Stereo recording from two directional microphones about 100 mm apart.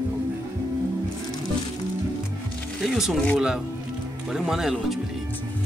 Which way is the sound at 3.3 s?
5° right (ahead or behind).